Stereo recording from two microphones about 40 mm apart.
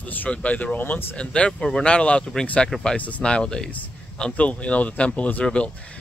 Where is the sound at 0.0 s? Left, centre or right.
Left.